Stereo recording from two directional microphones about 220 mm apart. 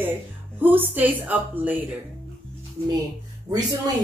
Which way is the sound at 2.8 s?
25° right (ahead or behind).